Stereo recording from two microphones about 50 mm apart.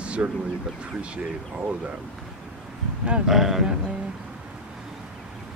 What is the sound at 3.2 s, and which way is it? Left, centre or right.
Speech, centre.